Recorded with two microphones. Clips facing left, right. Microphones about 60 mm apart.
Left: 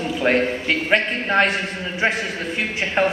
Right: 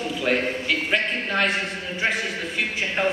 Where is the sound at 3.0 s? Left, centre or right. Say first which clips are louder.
Left 4 dB; left.